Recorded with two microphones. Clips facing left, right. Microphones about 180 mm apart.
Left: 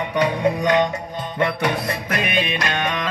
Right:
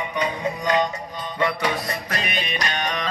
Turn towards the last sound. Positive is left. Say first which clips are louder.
# left 3 dB
turn(degrees=55)  # may be behind; listen again after turning